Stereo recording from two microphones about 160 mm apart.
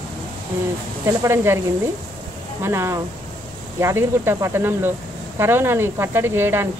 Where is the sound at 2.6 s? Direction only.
15° right (ahead or behind).